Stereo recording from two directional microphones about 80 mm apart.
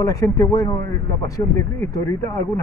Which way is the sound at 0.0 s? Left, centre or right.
Left.